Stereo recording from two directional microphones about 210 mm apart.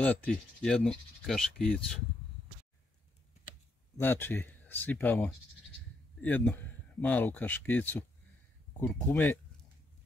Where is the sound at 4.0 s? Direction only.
10° left (ahead or behind).